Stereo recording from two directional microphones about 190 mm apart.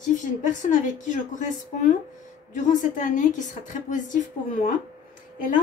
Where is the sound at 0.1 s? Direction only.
40° left (ahead or behind).